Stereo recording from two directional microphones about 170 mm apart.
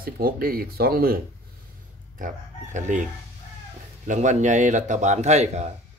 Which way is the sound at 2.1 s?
50° right (ahead or behind).